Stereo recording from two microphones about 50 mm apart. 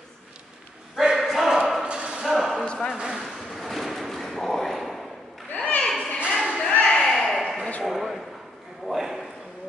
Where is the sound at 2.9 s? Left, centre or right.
Centre.